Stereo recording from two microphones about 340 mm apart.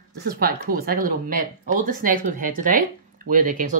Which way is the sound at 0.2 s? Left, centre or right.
Right.